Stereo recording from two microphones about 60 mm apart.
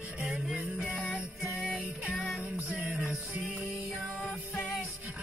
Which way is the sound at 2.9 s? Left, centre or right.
Centre.